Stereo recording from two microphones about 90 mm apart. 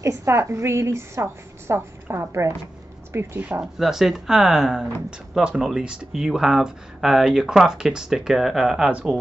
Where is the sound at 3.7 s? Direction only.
Centre (ahead or behind).